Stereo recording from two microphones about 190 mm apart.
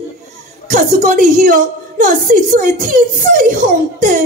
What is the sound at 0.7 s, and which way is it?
A woman's voice, 45° right (ahead or behind).